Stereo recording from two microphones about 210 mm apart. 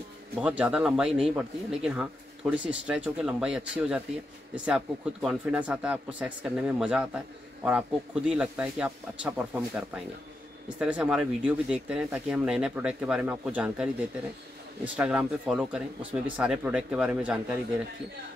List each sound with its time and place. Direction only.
0.4 s speech: 5° right (ahead or behind)
15.0 s speech: 5° right (ahead or behind)